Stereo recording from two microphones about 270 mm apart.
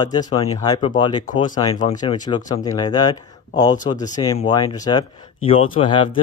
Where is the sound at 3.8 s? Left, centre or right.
Left.